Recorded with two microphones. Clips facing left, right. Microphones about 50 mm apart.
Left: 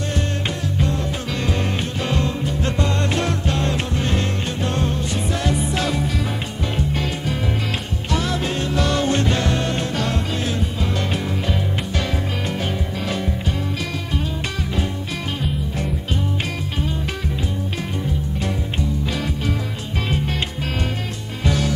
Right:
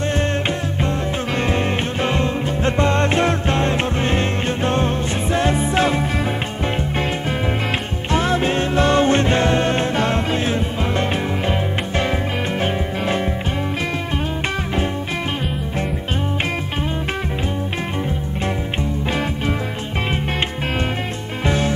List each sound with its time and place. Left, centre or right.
2.0 s music: right
12.5 s music: right
21.5 s music: right